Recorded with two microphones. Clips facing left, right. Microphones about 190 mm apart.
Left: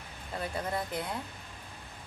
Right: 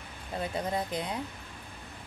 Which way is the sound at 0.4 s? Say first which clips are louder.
Right 2 dB; 20° right (ahead or behind).